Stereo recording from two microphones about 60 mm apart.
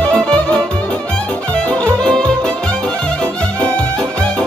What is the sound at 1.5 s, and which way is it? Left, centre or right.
Music, centre.